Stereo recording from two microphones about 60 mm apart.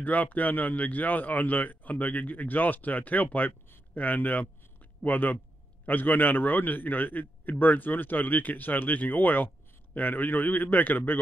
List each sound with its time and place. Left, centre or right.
0.0 s a man's voice: left